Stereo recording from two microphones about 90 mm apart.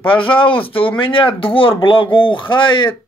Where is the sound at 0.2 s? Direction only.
75° left (ahead or behind).